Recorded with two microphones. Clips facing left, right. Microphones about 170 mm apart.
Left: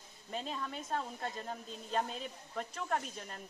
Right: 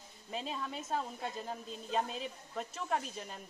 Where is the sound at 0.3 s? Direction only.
Centre (ahead or behind).